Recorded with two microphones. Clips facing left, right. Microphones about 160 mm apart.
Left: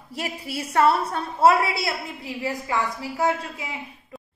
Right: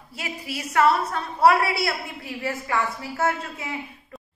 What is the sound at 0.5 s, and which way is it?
A woman's voice, 30° left (ahead or behind).